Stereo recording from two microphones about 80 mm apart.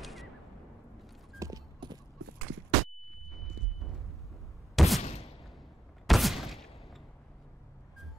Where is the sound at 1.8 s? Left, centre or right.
Right.